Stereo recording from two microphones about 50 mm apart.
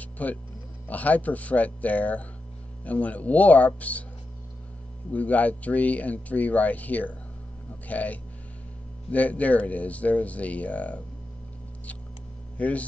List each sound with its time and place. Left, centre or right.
0.0 s music: left
0.8 s speech: left
5.1 s speech: left
12.5 s speech: left